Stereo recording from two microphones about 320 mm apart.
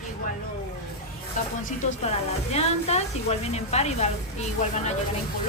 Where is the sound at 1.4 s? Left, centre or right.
Left.